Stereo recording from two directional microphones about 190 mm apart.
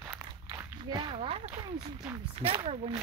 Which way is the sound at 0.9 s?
25° right (ahead or behind).